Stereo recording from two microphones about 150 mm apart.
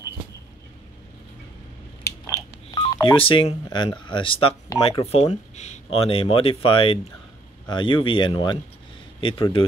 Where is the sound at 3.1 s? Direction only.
35° left (ahead or behind).